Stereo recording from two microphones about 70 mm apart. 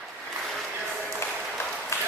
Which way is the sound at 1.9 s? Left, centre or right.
Left.